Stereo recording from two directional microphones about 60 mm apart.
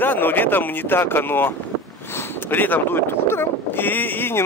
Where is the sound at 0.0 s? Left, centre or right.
Left.